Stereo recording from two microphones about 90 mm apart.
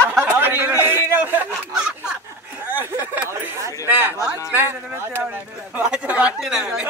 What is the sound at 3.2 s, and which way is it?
Speech, 30° right (ahead or behind).